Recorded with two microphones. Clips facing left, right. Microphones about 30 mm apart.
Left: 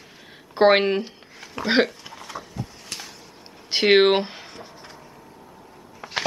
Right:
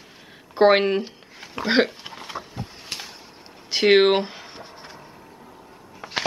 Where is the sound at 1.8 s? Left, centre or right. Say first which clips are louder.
Right 1 dB; right.